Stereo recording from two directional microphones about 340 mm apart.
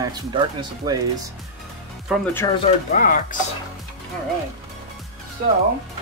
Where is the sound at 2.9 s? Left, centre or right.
Left.